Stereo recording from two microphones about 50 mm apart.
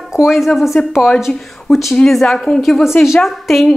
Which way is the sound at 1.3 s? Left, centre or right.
Centre.